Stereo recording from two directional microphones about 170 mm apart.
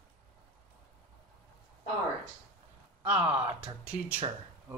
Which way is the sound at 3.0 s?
5° right (ahead or behind).